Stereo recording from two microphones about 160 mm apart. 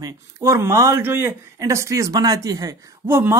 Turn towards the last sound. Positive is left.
turn(degrees=-15)  # may be behind; listen again after turning